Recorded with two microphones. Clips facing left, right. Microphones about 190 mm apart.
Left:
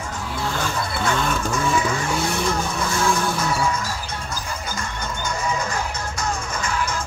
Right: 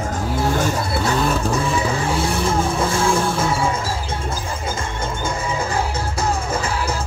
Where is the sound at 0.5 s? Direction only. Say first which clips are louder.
Right 5 dB; 35° right (ahead or behind).